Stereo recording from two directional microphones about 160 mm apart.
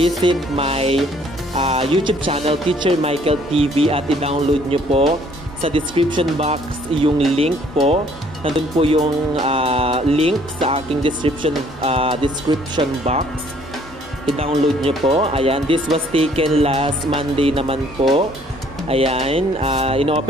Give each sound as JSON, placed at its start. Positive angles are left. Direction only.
{"t": 0.2, "sound": "speech", "side_deg": -35}
{"t": 14.9, "sound": "speech", "side_deg": -35}